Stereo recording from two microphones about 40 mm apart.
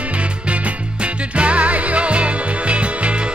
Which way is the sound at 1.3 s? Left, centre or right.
Right.